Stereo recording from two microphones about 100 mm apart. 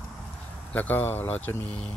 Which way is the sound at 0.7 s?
20° left (ahead or behind).